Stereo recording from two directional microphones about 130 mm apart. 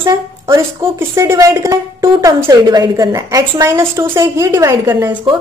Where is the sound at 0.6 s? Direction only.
20° right (ahead or behind).